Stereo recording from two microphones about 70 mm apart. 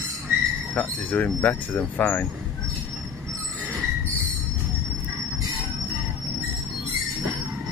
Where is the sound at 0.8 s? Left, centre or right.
Centre.